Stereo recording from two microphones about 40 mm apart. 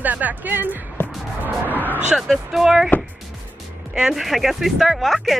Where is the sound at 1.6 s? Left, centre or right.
Right.